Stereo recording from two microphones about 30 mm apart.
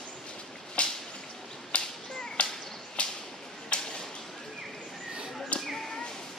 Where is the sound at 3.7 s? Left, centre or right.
Left.